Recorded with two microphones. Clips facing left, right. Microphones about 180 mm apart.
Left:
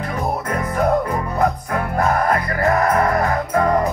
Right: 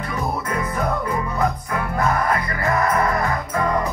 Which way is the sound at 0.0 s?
45° left (ahead or behind).